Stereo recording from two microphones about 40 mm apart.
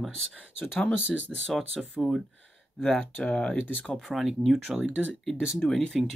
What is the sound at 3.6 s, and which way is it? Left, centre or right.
Speech, left.